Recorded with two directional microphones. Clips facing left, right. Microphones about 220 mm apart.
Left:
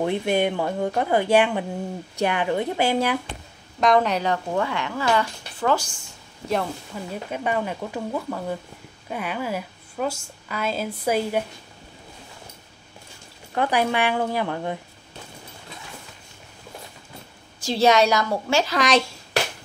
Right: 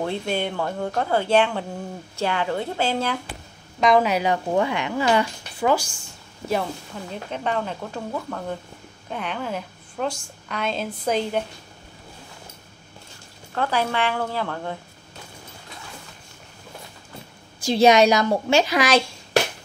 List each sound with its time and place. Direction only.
0.0 s a woman's voice: 15° left (ahead or behind)
3.8 s speech: 5° right (ahead or behind)
7.1 s a woman's voice: 10° left (ahead or behind)
13.6 s a woman's voice: 15° left (ahead or behind)
17.6 s speech: 15° right (ahead or behind)
18.8 s speech: centre (ahead or behind)